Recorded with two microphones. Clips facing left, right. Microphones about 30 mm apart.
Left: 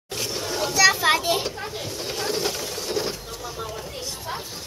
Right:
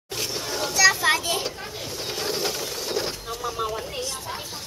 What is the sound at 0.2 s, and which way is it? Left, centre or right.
Children playing, centre.